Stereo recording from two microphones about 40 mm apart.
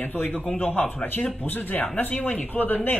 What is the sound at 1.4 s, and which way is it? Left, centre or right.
Speech, left.